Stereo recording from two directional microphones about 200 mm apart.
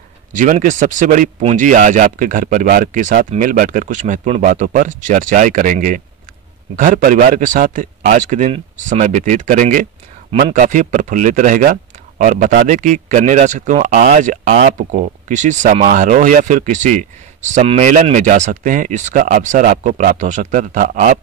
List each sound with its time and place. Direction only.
0.3 s speech: 40° right (ahead or behind)